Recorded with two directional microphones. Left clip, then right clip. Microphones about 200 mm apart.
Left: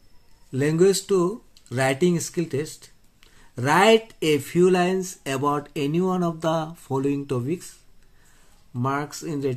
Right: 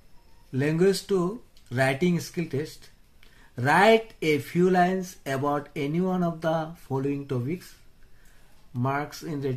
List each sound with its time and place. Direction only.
0.5 s speech: 30° left (ahead or behind)
8.7 s speech: 35° left (ahead or behind)